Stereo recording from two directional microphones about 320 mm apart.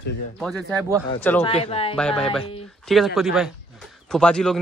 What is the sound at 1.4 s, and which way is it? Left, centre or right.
Speech, centre.